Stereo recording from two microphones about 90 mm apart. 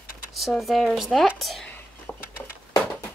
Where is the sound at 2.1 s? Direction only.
20° left (ahead or behind).